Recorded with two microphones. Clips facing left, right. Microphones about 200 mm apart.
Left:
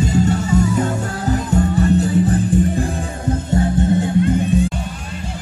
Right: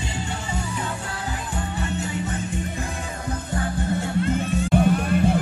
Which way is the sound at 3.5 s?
25° left (ahead or behind).